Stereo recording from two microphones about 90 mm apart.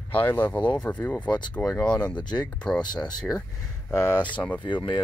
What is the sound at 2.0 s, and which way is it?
Speech, 55° left (ahead or behind).